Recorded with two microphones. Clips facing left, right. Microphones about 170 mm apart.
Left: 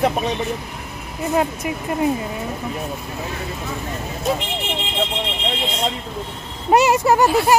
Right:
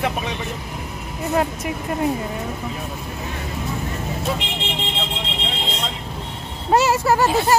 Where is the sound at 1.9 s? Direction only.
5° left (ahead or behind).